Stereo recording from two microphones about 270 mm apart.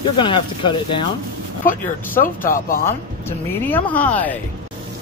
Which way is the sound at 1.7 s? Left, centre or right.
Left.